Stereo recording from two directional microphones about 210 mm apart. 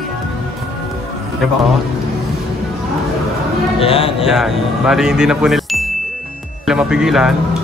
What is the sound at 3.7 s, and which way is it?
Speech, 25° left (ahead or behind).